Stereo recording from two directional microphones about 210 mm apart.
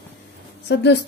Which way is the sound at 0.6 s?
55° left (ahead or behind).